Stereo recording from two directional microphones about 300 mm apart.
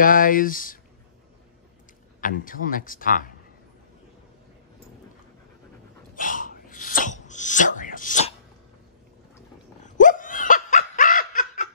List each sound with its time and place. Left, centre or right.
0.0 s speech: left
2.2 s speech: left
6.1 s gasp: left
9.8 s laughter: left